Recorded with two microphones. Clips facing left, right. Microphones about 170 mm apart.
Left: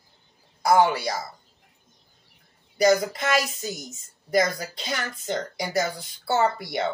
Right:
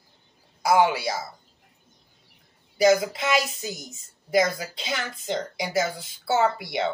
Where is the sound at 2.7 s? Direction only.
5° right (ahead or behind).